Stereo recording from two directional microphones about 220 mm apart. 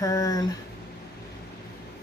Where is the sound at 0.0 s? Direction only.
15° left (ahead or behind).